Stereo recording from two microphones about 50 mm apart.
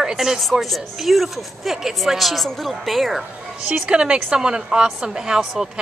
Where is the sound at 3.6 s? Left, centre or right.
Centre.